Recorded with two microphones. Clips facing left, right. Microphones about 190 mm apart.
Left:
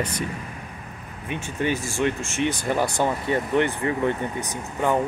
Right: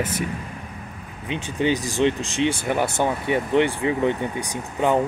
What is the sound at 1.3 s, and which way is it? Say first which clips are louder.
Speech: right 3 dB; 20° right (ahead or behind).